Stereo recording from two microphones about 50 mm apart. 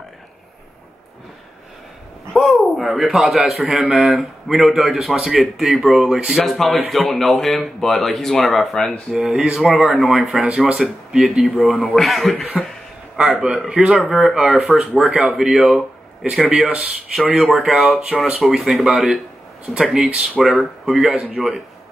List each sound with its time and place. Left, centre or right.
2.3 s a man's voice: centre
9.1 s a man's voice: centre
10.4 s speech: centre
11.1 s a man's voice: centre
12.5 s a sound: centre
13.7 s speech: centre
16.4 s speech: right
17.5 s a man's voice: centre